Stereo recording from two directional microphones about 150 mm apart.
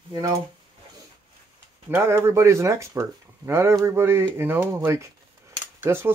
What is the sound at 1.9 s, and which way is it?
Speech, 15° right (ahead or behind).